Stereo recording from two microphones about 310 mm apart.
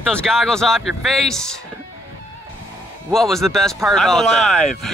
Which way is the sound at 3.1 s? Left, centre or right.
Centre.